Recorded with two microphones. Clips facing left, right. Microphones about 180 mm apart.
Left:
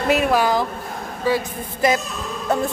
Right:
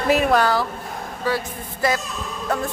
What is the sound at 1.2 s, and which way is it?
Speech, 15° left (ahead or behind).